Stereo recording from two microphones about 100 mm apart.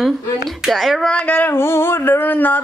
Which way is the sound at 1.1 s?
15° left (ahead or behind).